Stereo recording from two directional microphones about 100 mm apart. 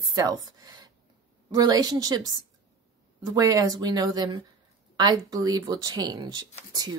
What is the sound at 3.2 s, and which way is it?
Speech, 40° right (ahead or behind).